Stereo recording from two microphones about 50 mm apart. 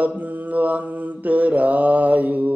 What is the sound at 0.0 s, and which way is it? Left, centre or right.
Mantra, right.